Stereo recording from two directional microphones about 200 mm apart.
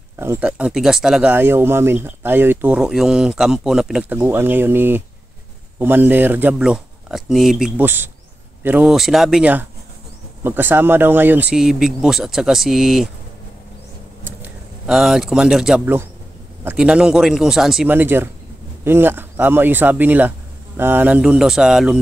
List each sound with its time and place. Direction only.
0.2 s speech: 10° right (ahead or behind)
14.2 s speech: 5° right (ahead or behind)